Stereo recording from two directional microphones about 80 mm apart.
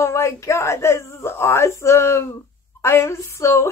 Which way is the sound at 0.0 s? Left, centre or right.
Left.